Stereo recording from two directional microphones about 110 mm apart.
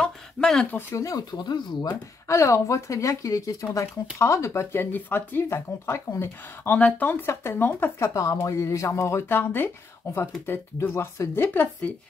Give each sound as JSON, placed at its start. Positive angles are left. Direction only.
{"t": 0.0, "sound": "a sound", "side_deg": 5}
{"t": 0.7, "sound": "speech", "side_deg": 30}
{"t": 1.9, "sound": "speech", "side_deg": 25}
{"t": 8.1, "sound": "speech", "side_deg": 30}